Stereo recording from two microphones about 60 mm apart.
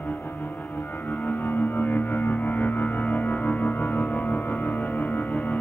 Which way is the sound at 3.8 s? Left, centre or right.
Left.